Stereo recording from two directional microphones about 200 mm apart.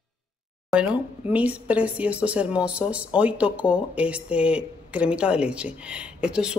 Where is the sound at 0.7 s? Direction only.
5° right (ahead or behind).